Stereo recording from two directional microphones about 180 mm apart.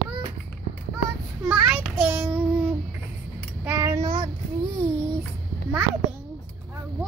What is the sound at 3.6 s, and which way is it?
Child singing, 15° right (ahead or behind).